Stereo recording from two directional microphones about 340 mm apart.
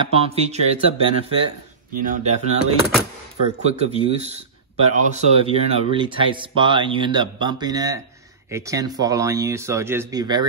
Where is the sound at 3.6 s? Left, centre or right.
Centre.